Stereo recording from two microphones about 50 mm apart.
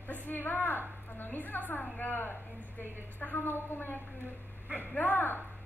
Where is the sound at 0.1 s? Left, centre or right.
Left.